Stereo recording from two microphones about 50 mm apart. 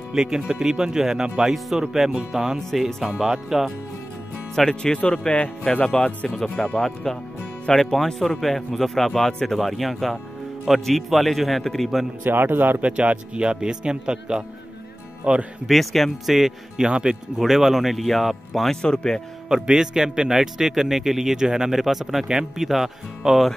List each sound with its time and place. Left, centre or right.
0.1 s speech: centre
1.5 s speech: centre
4.6 s speech: centre
6.2 s a man's voice: centre
12.2 s speech: right
12.8 s speech: right
15.6 s a man's voice: centre
18.8 s speech: centre
19.5 s a man's voice: centre